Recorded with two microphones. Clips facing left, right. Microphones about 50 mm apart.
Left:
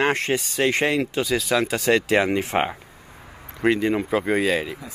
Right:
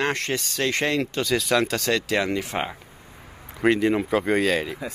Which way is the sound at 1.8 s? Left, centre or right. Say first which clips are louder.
Left 4 dB; left.